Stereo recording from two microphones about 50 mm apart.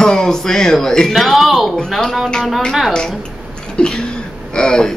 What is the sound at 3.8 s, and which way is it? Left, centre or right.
Throat clearing, centre.